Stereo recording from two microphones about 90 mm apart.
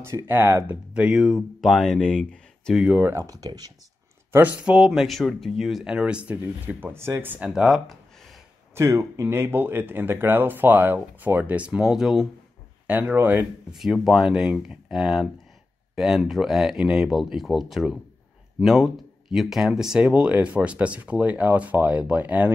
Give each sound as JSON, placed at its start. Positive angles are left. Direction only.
{"t": 0.0, "sound": "speech", "side_deg": -25}
{"t": 2.7, "sound": "speech", "side_deg": -10}
{"t": 3.0, "sound": "speech", "side_deg": -25}
{"t": 3.3, "sound": "speech", "side_deg": -45}
{"t": 4.3, "sound": "speech", "side_deg": -20}
{"t": 4.7, "sound": "speech", "side_deg": -5}
{"t": 7.4, "sound": "speech", "side_deg": -5}
{"t": 8.7, "sound": "speech", "side_deg": -30}
{"t": 12.8, "sound": "speech", "side_deg": -15}
{"t": 13.7, "sound": "speech", "side_deg": 0}